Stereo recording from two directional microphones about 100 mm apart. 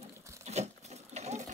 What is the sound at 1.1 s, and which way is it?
Sewing machine, 90° right.